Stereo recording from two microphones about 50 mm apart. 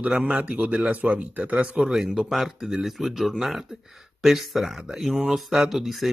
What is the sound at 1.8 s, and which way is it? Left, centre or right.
Speech, centre.